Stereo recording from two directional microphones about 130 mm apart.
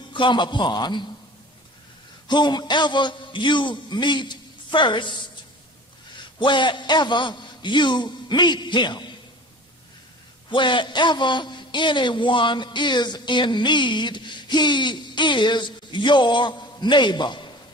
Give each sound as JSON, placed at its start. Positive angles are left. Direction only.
{"t": 0.1, "sound": "a man's voice", "side_deg": 35}
{"t": 2.2, "sound": "a man's voice", "side_deg": 35}
{"t": 6.4, "sound": "a man's voice", "side_deg": 35}
{"t": 10.5, "sound": "a man's voice", "side_deg": 40}